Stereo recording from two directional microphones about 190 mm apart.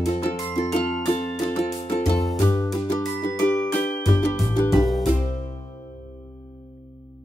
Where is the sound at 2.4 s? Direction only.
15° left (ahead or behind).